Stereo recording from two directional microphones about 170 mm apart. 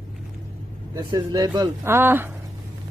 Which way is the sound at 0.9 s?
20° right (ahead or behind).